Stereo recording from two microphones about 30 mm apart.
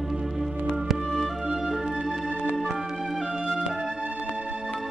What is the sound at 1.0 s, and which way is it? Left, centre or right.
Music, centre.